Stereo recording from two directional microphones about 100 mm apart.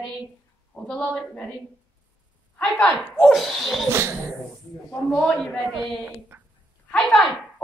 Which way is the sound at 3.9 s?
25° right (ahead or behind).